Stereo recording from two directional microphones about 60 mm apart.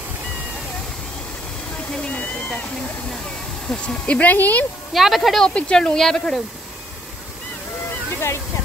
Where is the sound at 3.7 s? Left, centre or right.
Centre.